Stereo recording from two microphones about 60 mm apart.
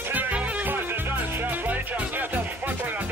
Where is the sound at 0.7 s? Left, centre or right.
Right.